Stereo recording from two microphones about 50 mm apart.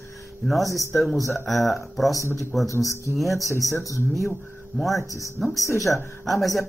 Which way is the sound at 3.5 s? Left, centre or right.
Left.